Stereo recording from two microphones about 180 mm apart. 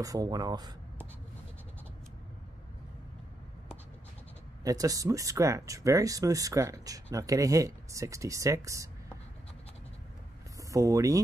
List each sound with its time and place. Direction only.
0.0 s speech: 20° right (ahead or behind)
4.6 s speech: 20° right (ahead or behind)
10.7 s speech: 15° right (ahead or behind)